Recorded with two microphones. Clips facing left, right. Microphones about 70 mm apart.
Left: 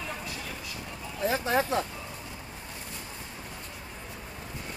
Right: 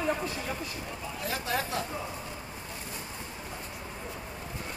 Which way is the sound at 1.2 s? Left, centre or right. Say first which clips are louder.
Left 6 dB; left.